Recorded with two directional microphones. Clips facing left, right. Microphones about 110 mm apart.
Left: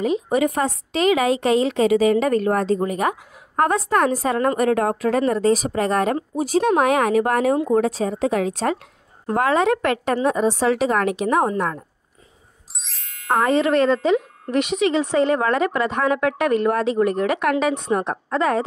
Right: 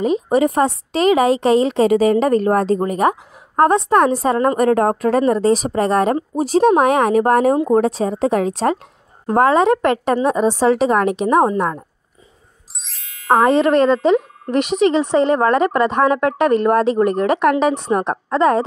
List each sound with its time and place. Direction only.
0.0 s a woman's voice: 35° right (ahead or behind)
6.3 s a woman's voice: 40° right (ahead or behind); by 11.8 s 25° right (ahead or behind)
12.8 s ding: centre (ahead or behind)
13.4 s a woman's voice: 35° right (ahead or behind)